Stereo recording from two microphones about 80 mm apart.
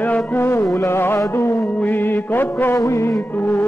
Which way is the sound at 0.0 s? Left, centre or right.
Left.